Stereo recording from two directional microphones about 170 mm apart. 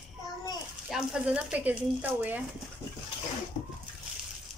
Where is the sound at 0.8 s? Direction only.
5° right (ahead or behind).